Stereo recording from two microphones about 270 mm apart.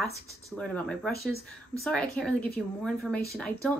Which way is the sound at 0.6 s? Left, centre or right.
Centre.